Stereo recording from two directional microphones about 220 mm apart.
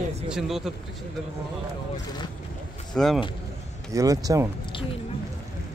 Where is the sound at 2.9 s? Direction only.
Centre (ahead or behind).